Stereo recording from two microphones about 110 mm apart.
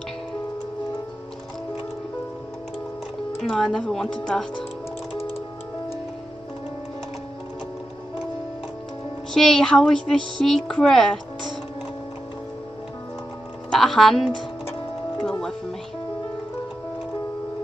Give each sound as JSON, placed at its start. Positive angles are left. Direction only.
{"t": 3.4, "sound": "speech", "side_deg": 5}
{"t": 5.1, "sound": "music", "side_deg": 60}
{"t": 9.3, "sound": "speech", "side_deg": 5}
{"t": 13.7, "sound": "speech", "side_deg": 0}
{"t": 15.1, "sound": "music", "side_deg": 10}